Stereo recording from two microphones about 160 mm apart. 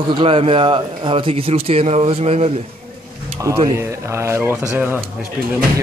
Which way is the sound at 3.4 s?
20° right (ahead or behind).